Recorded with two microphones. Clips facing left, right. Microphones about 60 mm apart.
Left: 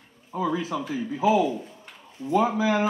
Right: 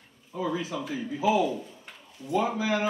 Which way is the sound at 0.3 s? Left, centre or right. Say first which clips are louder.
Left 4 dB; left.